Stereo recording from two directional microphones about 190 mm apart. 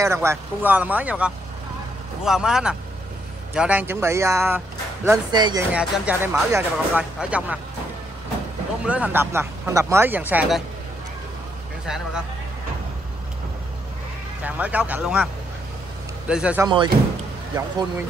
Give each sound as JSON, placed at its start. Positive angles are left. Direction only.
{"t": 0.0, "sound": "speech", "side_deg": -15}
{"t": 5.7, "sound": "speech", "side_deg": -5}
{"t": 8.8, "sound": "speech", "side_deg": -5}
{"t": 14.4, "sound": "speech", "side_deg": -5}
{"t": 16.3, "sound": "speech", "side_deg": -5}
{"t": 16.6, "sound": "speech", "side_deg": -25}